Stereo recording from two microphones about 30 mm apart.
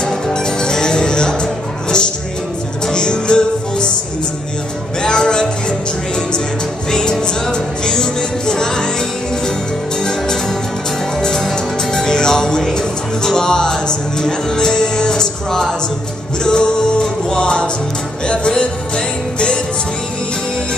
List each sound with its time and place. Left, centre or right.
0.0 s music: left
5.0 s music: left
6.9 s music: left
10.0 s music: centre; by 18.5 s left